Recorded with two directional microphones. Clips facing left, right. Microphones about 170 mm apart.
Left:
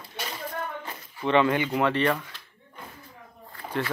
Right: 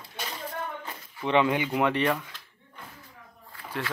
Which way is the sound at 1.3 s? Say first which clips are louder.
Left 2 dB; 10° right (ahead or behind).